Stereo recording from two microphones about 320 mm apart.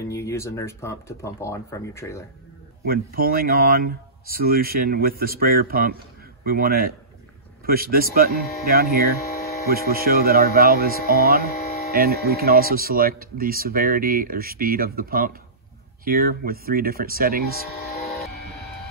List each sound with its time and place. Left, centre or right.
0.1 s speech: centre
2.8 s speech: right
9.2 s hum: left
9.7 s speech: right
11.4 s mains hum: left
11.9 s speech: right
17.6 s a sound: left